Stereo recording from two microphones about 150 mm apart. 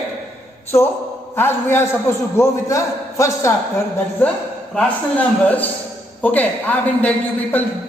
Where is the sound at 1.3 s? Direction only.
15° left (ahead or behind).